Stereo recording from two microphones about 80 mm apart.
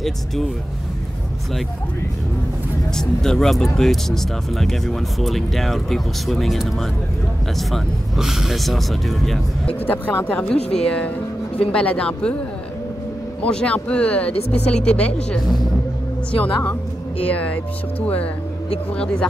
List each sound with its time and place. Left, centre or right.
3.0 s speech: centre
9.8 s speech: left
13.4 s speech: centre